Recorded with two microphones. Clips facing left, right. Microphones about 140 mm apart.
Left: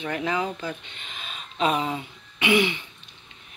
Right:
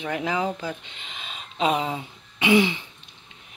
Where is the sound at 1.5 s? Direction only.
20° right (ahead or behind).